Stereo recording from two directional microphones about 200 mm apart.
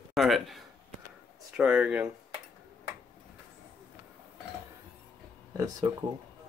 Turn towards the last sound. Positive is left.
turn(degrees=-20)  # may be behind; listen again after turning